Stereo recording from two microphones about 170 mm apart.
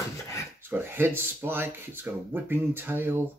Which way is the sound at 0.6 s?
15° right (ahead or behind).